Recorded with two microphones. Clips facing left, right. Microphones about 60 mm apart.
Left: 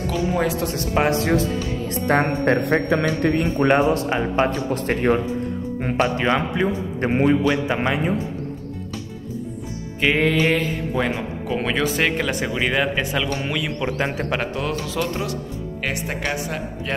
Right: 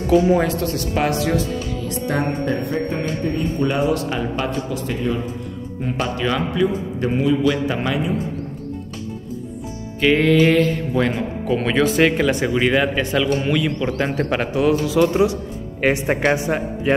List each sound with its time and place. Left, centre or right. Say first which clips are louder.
0.9 s a man's voice: left 1 dB; left
2.0 s speech: left 4 dB; left
2.9 s a man's voice: left 4 dB; left
3.4 s speech: left 2 dB; left
3.9 s a man's voice: left 1 dB; left
4.6 s speech: left 3 dB; left
5.9 s a man's voice: left 2 dB; left
7.4 s a man's voice: right 1 dB; left
10.0 s a man's voice: right 4 dB; centre
14.3 s speech: right 6 dB; centre
15.8 s speech: right 9 dB; right